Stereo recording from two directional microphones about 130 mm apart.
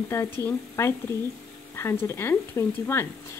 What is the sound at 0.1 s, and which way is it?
Speech, 20° left (ahead or behind).